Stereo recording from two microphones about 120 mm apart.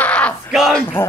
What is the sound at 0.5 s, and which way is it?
Speech, centre (ahead or behind).